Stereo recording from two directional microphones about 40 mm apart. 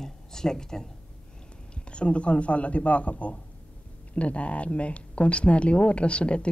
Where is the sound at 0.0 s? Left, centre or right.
Centre.